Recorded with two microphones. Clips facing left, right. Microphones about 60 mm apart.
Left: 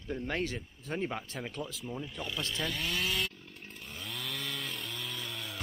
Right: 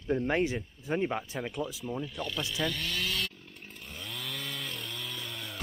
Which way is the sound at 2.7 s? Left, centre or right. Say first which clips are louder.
Even; centre.